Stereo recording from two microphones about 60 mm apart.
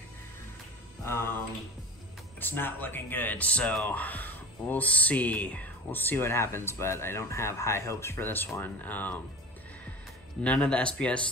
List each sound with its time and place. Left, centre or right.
1.0 s a sound: left
2.4 s speech: left
10.4 s speech: centre